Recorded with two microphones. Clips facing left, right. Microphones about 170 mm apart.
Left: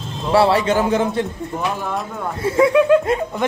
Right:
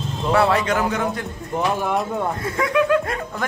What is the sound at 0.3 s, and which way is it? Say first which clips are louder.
Speech: left 3 dB; 30° left (ahead or behind).